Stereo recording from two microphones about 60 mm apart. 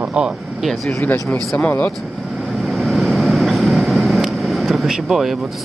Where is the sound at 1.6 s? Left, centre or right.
Left.